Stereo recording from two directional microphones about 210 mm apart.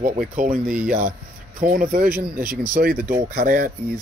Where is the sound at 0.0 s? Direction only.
40° right (ahead or behind).